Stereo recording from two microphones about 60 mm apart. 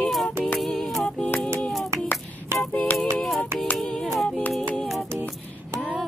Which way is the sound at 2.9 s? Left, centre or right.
Left.